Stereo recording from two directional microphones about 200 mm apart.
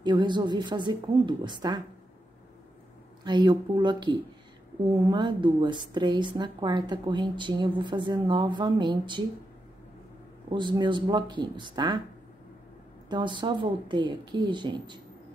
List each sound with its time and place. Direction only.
0.0 s a woman's voice: 20° right (ahead or behind)
3.3 s a woman's voice: 25° right (ahead or behind)
10.5 s a woman's voice: 25° right (ahead or behind)
13.1 s a woman's voice: 25° right (ahead or behind)